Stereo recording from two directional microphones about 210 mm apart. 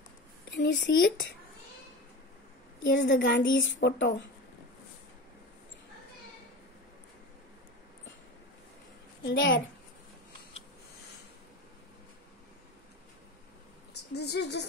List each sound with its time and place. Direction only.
0.5 s a woman's voice: 60° left (ahead or behind)
2.9 s a woman's voice: 60° left (ahead or behind)
9.2 s a woman's voice: 60° left (ahead or behind)
14.1 s a sound: 50° left (ahead or behind)